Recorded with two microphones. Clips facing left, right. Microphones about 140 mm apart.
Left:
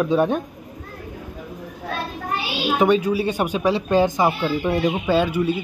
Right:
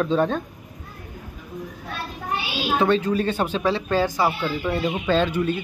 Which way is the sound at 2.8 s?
15° left (ahead or behind).